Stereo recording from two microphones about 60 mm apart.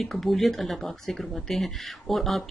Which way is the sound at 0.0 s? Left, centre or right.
Centre.